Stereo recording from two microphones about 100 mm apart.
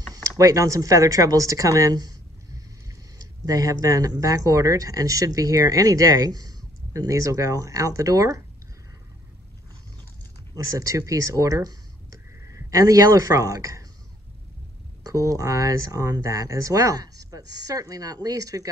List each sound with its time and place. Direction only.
0.1 s speech: 35° right (ahead or behind)
3.2 s speech: 35° right (ahead or behind)
10.5 s speech: 35° right (ahead or behind)
15.0 s speech: 35° right (ahead or behind)